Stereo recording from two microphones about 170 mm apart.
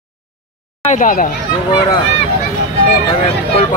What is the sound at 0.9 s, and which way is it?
Speech, 50° left (ahead or behind).